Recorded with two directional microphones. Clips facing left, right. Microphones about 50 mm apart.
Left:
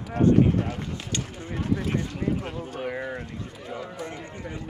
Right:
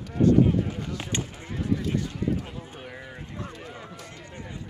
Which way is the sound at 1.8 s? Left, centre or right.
Left.